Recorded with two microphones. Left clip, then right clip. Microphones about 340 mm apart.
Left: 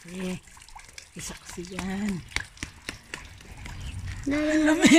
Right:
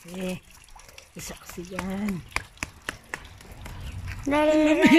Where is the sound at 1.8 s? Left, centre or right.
Centre.